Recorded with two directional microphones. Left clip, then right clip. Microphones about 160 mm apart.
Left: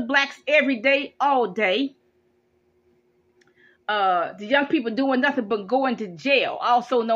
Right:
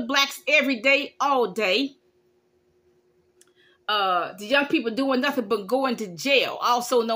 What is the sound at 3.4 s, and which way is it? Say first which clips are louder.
Speech: left 3 dB; 30° right (ahead or behind).